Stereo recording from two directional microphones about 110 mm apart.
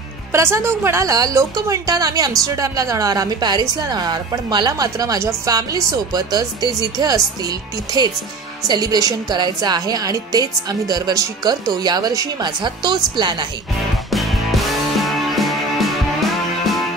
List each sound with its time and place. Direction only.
0.3 s a woman's voice: 25° right (ahead or behind); by 13.5 s 45° right (ahead or behind)
14.1 s music: centre (ahead or behind)